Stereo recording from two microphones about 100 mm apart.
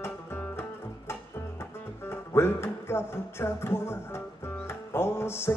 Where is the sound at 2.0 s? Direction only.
25° left (ahead or behind).